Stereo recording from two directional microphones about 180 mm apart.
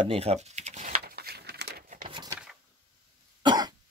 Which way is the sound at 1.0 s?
60° right (ahead or behind).